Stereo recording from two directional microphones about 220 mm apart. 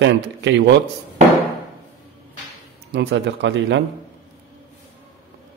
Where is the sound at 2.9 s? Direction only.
50° right (ahead or behind).